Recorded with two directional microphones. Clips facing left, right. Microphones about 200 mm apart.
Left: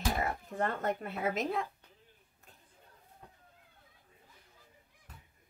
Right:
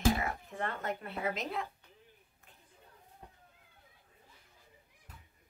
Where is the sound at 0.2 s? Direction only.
40° left (ahead or behind).